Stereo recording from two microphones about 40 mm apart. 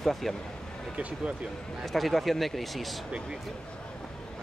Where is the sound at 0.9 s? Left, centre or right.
Right.